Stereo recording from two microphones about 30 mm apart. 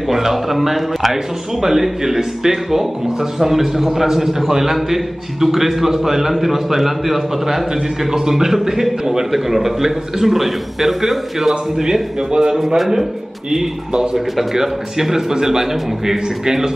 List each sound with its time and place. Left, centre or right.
0.1 s a man's voice: centre
11.7 s a man's voice: right
12.5 s speech: centre
14.1 s speech: centre